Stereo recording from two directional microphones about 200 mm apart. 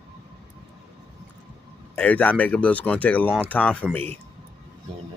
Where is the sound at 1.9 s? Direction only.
10° left (ahead or behind).